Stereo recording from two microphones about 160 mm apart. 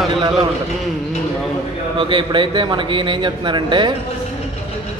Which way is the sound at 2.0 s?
30° right (ahead or behind).